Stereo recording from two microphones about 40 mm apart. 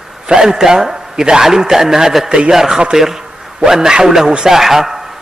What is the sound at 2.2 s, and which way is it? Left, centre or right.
Speech, right.